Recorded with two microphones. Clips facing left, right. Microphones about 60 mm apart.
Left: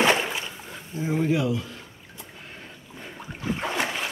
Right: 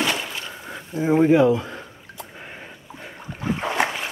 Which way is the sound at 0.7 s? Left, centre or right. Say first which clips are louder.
Right 11 dB; right.